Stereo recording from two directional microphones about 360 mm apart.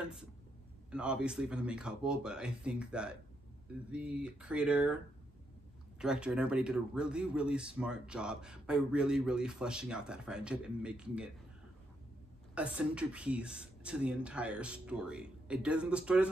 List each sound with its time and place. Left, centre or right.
0.0 s a man's voice: centre
12.5 s a man's voice: centre